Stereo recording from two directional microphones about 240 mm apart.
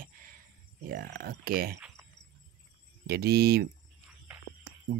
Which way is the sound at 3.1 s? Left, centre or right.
Right.